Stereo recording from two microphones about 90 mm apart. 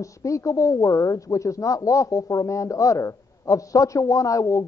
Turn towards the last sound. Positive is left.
turn(degrees=35)  # may be behind; listen again after turning